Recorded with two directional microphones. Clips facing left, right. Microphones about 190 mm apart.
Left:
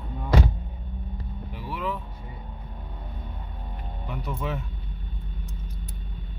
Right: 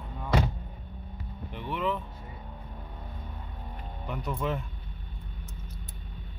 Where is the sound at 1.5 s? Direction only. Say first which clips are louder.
Right 1 dB; 5° left (ahead or behind).